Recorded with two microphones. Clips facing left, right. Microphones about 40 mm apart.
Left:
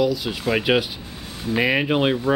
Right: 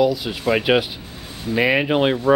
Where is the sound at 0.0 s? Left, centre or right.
Centre.